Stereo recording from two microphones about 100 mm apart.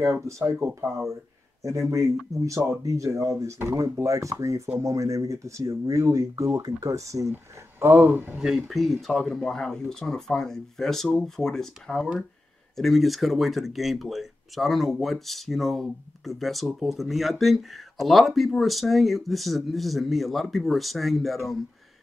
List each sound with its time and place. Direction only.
0.0 s speech: 30° right (ahead or behind)
7.8 s speech: 20° right (ahead or behind)
8.4 s speech: 5° right (ahead or behind)